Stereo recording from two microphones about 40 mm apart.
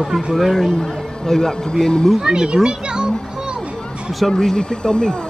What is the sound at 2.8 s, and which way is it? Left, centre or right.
Music, centre.